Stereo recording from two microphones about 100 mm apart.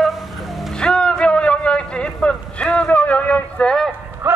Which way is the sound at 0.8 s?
10° left (ahead or behind).